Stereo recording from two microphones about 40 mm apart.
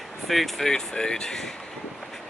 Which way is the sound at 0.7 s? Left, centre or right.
Centre.